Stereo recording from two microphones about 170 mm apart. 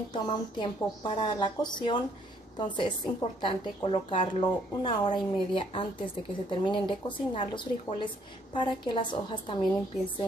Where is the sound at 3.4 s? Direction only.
30° left (ahead or behind).